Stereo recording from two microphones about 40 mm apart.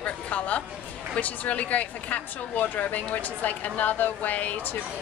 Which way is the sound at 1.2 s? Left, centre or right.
Left.